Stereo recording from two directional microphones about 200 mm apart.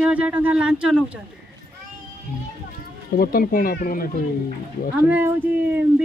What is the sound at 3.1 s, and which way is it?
Speech, 45° left (ahead or behind).